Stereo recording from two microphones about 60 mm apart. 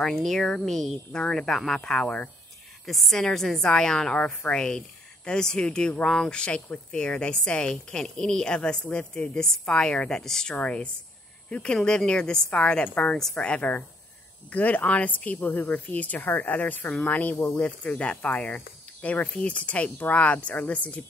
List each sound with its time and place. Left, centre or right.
0.0 s a woman's voice: centre
2.9 s a woman's voice: centre; by 13.2 s left
13.2 s a woman's voice: centre
13.5 s speech: left